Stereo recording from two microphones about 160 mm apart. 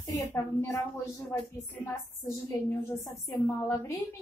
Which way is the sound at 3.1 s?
20° left (ahead or behind).